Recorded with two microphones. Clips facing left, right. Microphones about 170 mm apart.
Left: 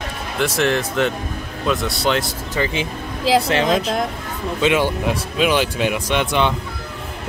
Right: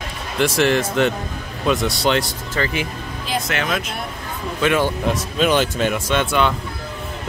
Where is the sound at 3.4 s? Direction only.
30° left (ahead or behind).